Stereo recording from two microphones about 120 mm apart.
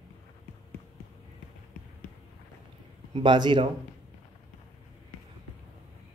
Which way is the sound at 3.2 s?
40° right (ahead or behind).